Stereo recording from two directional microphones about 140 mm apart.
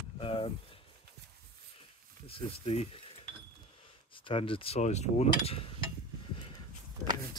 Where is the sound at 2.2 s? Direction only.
45° left (ahead or behind).